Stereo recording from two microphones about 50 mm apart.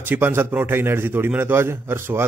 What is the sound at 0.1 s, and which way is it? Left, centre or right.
A man's voice, right.